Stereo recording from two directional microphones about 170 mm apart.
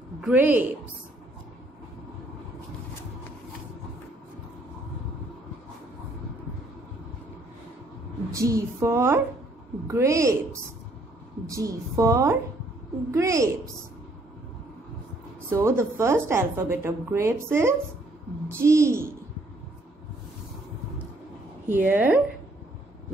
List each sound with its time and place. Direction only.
0.2 s a woman's voice: 10° right (ahead or behind)
8.3 s a woman's voice: 20° right (ahead or behind)
11.4 s a woman's voice: 20° right (ahead or behind)
15.5 s a woman's voice: 15° right (ahead or behind)
21.6 s a woman's voice: 10° right (ahead or behind)